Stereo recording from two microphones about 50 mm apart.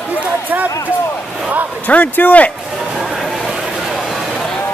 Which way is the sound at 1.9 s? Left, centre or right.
Left.